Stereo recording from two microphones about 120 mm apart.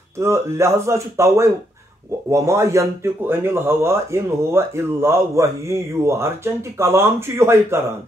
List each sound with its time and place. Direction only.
0.2 s a man's voice: 25° right (ahead or behind)